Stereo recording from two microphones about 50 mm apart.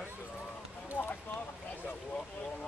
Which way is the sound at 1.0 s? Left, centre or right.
Right.